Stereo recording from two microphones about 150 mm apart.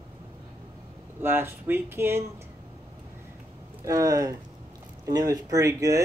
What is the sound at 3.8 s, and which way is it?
Speech, 25° right (ahead or behind).